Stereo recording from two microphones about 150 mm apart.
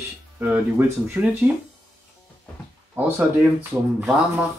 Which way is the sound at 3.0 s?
15° right (ahead or behind).